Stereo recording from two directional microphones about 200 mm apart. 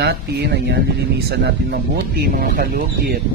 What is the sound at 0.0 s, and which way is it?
A man's voice, 55° right (ahead or behind).